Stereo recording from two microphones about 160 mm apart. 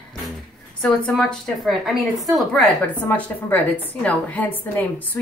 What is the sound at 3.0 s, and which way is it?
A woman's voice, 10° left (ahead or behind).